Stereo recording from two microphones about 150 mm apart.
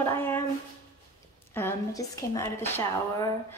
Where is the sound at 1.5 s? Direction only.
20° left (ahead or behind).